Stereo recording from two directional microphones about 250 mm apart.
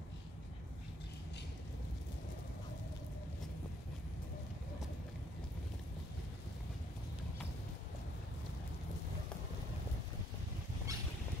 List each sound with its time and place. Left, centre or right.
10.9 s boat: centre